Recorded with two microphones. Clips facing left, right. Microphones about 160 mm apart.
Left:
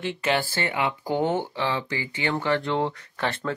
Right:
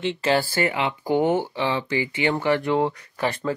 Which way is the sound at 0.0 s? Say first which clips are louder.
Right 3 dB; 20° right (ahead or behind).